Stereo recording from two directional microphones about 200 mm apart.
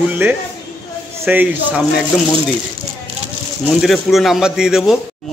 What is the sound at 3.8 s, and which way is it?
Speech, centre (ahead or behind).